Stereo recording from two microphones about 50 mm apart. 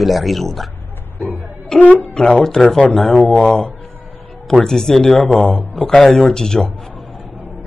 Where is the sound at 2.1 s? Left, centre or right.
Centre.